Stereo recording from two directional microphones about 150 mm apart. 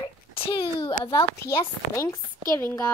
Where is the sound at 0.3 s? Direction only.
35° left (ahead or behind).